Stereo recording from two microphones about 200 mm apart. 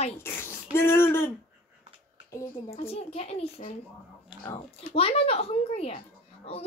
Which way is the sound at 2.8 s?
30° left (ahead or behind).